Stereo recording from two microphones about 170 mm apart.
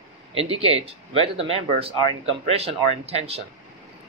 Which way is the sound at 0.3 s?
35° right (ahead or behind).